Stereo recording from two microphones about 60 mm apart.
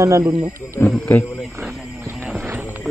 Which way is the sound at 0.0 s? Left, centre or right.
Right.